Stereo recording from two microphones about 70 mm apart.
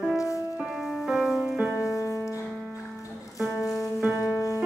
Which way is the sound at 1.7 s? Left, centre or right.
Left.